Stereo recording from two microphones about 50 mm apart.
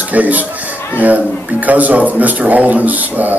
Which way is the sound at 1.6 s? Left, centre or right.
Right.